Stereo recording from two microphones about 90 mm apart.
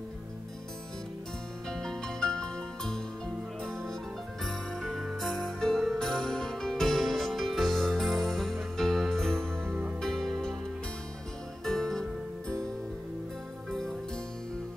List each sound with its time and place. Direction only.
1.7 s music: 5° left (ahead or behind)
4.5 s music: centre (ahead or behind)
11.6 s music: 5° left (ahead or behind)
13.7 s music: 5° left (ahead or behind)